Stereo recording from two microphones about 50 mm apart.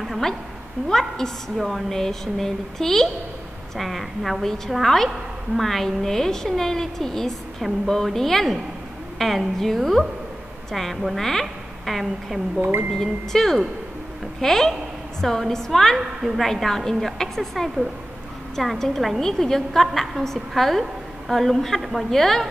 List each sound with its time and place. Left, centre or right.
0.8 s a woman's voice: centre
1.6 s a woman's voice: centre
1.9 s a woman's voice: centre